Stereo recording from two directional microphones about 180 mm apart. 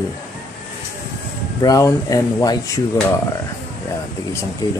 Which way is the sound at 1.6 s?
20° left (ahead or behind).